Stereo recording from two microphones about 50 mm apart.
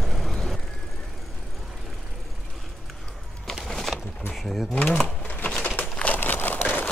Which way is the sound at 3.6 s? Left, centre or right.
Centre.